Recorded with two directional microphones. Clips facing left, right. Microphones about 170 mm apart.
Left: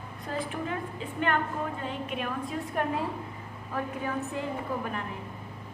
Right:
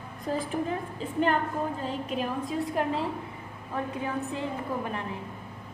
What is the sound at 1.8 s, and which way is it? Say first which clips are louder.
A woman's voice: right 3 dB; 35° right (ahead or behind).